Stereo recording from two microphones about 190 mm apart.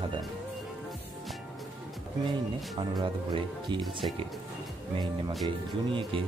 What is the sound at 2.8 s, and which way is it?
Speech, 25° right (ahead or behind).